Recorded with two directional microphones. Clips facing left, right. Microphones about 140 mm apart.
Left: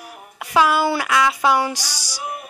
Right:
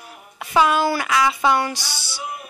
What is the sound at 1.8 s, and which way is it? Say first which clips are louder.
Music: even; 40° left (ahead or behind).